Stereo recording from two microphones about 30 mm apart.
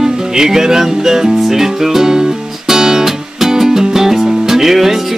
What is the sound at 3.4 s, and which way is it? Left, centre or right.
Music, centre.